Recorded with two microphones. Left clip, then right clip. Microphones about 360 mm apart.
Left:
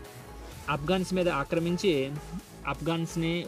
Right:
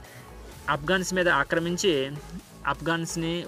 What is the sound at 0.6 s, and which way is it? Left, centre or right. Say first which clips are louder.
Speech: right 4 dB; centre.